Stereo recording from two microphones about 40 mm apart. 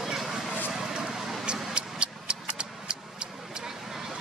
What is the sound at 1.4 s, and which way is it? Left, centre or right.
Vehicle, right.